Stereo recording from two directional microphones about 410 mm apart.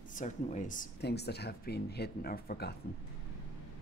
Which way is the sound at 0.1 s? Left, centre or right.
Centre.